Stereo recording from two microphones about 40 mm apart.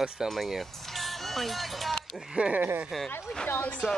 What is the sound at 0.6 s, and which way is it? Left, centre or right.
Music, centre.